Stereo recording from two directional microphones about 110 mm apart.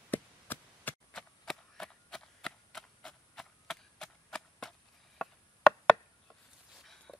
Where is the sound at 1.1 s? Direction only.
5° left (ahead or behind).